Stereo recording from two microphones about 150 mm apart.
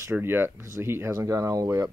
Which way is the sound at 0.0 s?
15° right (ahead or behind).